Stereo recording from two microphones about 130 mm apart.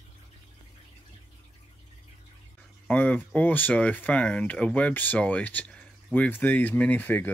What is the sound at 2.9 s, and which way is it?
Speech, 10° left (ahead or behind).